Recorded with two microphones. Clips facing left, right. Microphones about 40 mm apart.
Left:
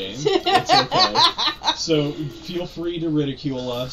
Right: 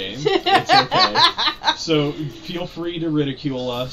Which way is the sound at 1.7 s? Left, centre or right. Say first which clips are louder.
Right 1 dB; right.